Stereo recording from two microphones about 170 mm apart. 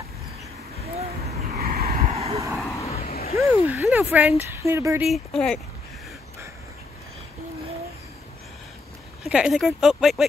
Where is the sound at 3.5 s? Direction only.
15° right (ahead or behind).